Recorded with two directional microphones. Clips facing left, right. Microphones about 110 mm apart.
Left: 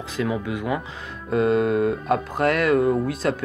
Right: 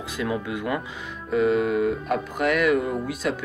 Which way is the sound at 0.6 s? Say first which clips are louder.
Left 1 dB; 20° left (ahead or behind).